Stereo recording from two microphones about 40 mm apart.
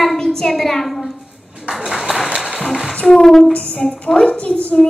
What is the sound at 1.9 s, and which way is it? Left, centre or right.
Applause, centre.